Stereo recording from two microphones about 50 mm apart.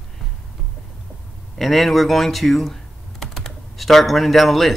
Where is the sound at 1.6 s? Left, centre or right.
Centre.